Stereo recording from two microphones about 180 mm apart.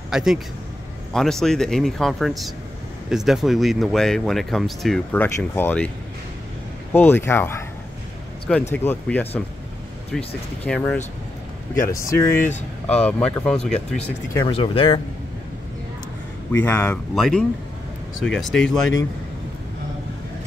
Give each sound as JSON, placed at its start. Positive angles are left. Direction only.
{"t": 0.1, "sound": "speech", "side_deg": -5}
{"t": 6.9, "sound": "speech", "side_deg": 10}
{"t": 8.7, "sound": "speech", "side_deg": 10}
{"t": 14.3, "sound": "speech", "side_deg": 30}
{"t": 16.5, "sound": "speech", "side_deg": 10}